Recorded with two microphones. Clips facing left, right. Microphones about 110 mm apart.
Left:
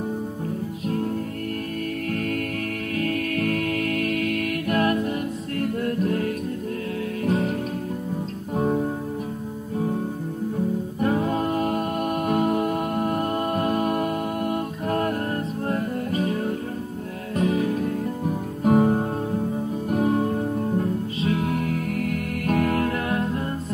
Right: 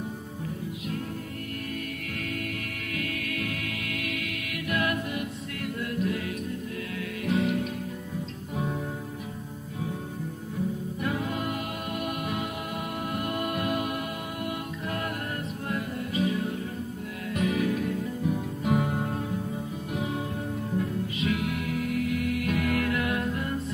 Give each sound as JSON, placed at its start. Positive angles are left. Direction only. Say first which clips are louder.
{"t": 2.1, "sound": "music", "louder": "left 5 dB", "side_deg": 45}
{"t": 11.0, "sound": "music", "louder": "left 9 dB", "side_deg": 40}
{"t": 17.4, "sound": "music", "louder": "left 4 dB", "side_deg": 35}